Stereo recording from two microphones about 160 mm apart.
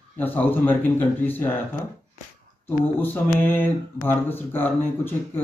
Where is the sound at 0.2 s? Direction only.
10° left (ahead or behind).